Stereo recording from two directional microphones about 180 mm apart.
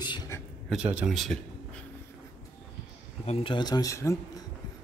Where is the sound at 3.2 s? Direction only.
30° left (ahead or behind); by 4.1 s 15° left (ahead or behind).